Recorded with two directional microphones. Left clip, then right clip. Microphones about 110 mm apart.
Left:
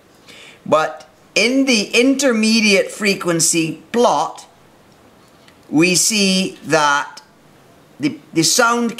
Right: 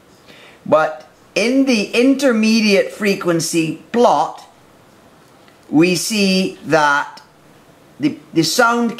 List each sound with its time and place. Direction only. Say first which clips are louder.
0.3 s speech: right 1 dB; 15° left (ahead or behind)
5.7 s speech: even; 15° left (ahead or behind)